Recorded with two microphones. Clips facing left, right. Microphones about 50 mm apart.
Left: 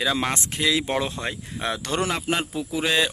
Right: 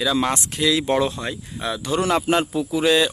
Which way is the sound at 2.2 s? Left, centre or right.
Centre.